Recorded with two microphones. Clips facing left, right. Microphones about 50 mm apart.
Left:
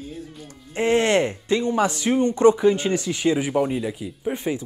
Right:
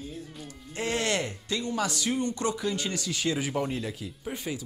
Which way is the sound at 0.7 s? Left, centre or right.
Left.